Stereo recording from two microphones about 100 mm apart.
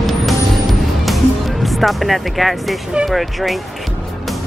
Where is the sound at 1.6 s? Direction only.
Centre (ahead or behind).